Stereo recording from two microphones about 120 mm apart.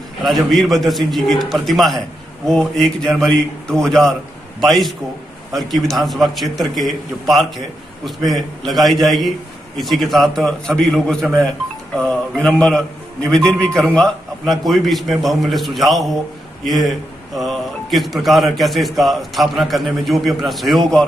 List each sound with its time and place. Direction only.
0.2 s a man's voice: centre (ahead or behind)